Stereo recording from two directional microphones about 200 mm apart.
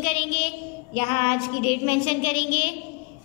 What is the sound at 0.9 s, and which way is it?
A woman's voice, 30° left (ahead or behind).